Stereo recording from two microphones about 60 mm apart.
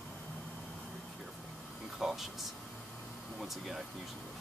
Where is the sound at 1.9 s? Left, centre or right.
Centre.